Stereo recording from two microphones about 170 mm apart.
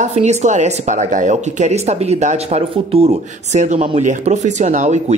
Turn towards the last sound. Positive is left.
turn(degrees=-45)  # may be behind; listen again after turning